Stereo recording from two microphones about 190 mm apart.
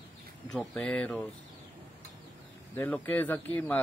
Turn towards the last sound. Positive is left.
turn(degrees=10)  # may be behind; listen again after turning